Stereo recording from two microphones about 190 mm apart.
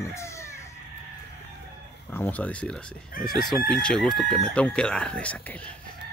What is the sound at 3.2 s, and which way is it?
Speech, centre (ahead or behind).